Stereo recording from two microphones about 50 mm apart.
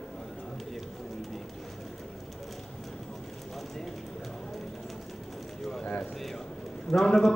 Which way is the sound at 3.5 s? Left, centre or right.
Centre.